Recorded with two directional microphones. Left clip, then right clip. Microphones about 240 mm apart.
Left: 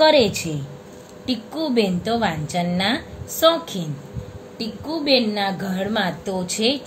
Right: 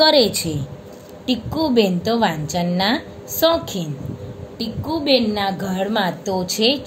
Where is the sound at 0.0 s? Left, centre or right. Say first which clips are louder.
Right 1 dB; centre.